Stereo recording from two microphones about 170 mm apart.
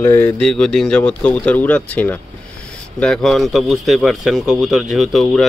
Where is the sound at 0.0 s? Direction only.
15° left (ahead or behind).